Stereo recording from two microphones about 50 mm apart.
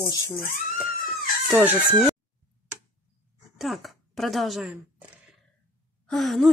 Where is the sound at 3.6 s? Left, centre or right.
Centre.